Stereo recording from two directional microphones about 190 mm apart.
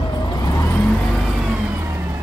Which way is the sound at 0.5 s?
5° left (ahead or behind).